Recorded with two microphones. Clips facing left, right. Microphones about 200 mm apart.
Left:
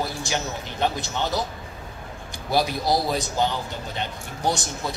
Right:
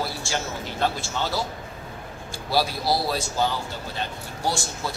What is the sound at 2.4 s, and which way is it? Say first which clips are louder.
Speech: left 1 dB; 20° left (ahead or behind).